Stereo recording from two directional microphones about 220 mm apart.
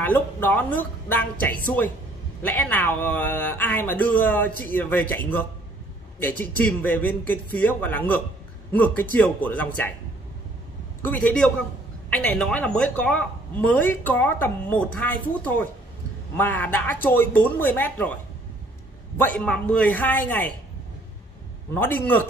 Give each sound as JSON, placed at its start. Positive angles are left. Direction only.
{"t": 0.0, "sound": "speech", "side_deg": 10}
{"t": 11.1, "sound": "a man's voice", "side_deg": 5}
{"t": 19.1, "sound": "speech", "side_deg": 5}
{"t": 21.7, "sound": "speech", "side_deg": 10}